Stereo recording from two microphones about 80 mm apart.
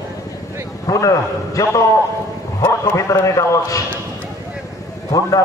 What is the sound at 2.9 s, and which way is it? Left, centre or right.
Speech, left.